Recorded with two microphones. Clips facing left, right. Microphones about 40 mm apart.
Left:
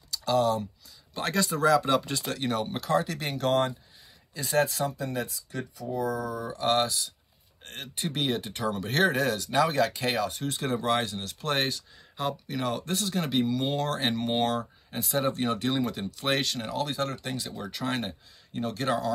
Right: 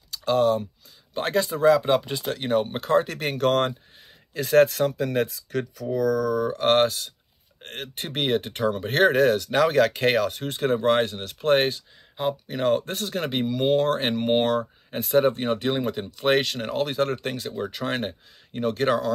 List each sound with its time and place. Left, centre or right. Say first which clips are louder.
0.1 s speech: right 4 dB; right
6.5 s speech: right 4 dB; right
12.5 s speech: right 9 dB; right